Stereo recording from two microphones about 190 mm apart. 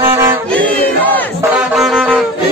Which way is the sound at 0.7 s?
10° left (ahead or behind).